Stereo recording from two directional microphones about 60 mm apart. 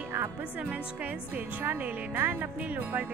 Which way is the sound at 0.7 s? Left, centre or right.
Right.